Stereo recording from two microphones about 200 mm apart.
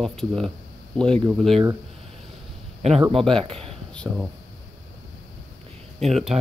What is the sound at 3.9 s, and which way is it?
Speech, 5° left (ahead or behind).